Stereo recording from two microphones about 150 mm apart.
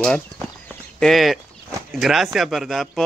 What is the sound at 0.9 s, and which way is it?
Speech, centre (ahead or behind).